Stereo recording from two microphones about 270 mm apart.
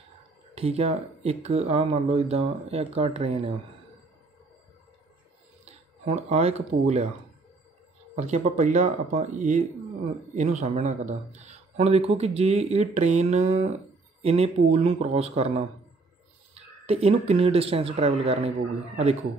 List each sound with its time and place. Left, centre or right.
0.6 s speech: right
5.7 s a sound: right
8.2 s speech: right